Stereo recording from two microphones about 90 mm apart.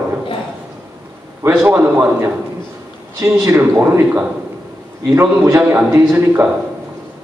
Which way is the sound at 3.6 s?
25° right (ahead or behind).